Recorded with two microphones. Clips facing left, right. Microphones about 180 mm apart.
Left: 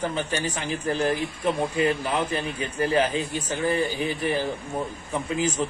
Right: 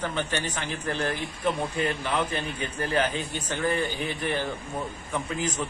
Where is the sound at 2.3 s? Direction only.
5° left (ahead or behind).